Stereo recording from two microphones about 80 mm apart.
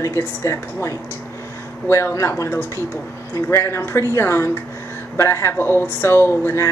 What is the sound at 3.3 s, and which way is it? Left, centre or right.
Speech, left.